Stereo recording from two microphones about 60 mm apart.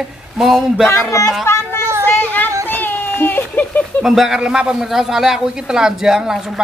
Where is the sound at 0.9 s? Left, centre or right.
Left.